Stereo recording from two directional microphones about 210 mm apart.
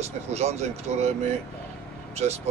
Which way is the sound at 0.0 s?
30° right (ahead or behind).